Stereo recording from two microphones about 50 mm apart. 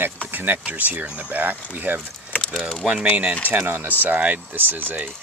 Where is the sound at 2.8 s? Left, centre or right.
Centre.